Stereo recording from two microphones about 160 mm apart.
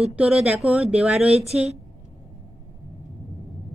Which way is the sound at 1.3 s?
40° right (ahead or behind).